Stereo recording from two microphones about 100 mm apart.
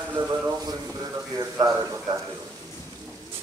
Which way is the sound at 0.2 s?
55° right (ahead or behind).